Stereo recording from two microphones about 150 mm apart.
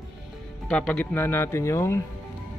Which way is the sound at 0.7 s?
5° left (ahead or behind).